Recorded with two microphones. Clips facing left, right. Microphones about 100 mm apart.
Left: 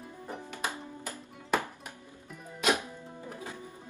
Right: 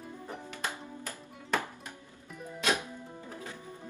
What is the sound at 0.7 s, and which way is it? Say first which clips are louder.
Music: left 1 dB; 15° left (ahead or behind).